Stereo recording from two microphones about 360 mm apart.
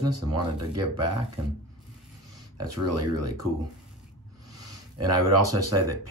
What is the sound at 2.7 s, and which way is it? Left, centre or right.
Speech, right.